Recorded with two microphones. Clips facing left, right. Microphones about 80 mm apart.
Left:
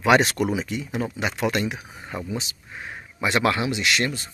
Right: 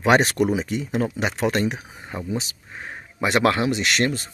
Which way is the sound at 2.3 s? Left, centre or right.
Right.